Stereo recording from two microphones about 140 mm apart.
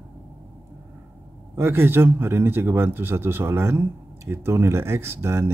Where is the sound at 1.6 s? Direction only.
15° right (ahead or behind).